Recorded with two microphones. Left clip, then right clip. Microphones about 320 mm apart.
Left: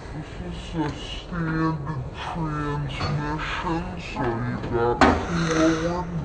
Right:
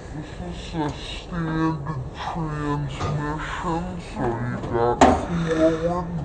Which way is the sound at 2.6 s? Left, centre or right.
Centre.